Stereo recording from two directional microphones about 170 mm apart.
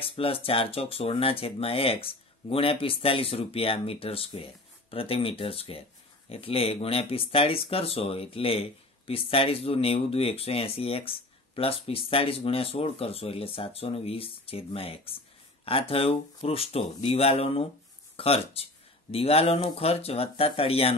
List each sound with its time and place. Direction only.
0.0 s speech: 35° left (ahead or behind)